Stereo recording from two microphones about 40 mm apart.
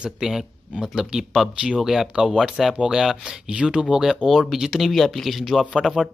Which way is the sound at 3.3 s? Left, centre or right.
Right.